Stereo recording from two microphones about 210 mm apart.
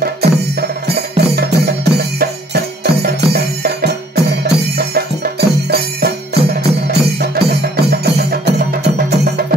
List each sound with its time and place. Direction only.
0.0 s music: 50° right (ahead or behind)